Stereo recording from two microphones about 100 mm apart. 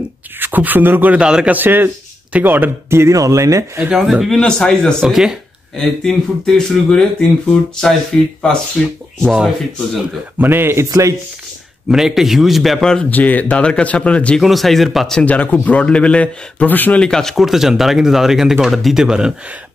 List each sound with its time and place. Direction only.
0.4 s speech: 20° right (ahead or behind)
3.9 s a man's voice: 5° right (ahead or behind)
5.0 s a man's voice: 5° right (ahead or behind)
10.4 s speech: 20° right (ahead or behind)
11.9 s a man's voice: 5° right (ahead or behind)
13.1 s speech: 15° left (ahead or behind)
14.4 s a man's voice: centre (ahead or behind)